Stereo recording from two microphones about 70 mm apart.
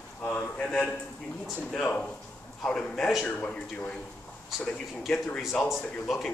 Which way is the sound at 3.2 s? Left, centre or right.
Centre.